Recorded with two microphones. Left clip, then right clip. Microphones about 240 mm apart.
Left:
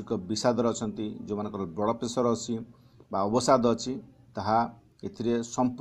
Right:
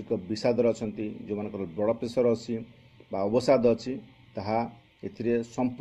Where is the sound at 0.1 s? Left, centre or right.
Centre.